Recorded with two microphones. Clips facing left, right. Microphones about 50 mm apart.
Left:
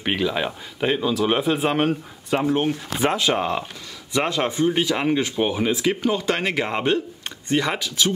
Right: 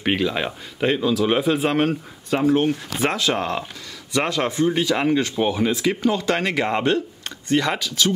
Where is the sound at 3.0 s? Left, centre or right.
Left.